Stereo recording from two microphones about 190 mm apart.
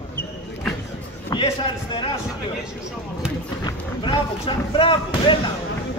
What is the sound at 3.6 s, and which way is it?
A man's voice, 25° left (ahead or behind).